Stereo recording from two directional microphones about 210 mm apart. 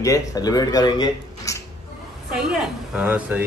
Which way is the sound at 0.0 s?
15° left (ahead or behind).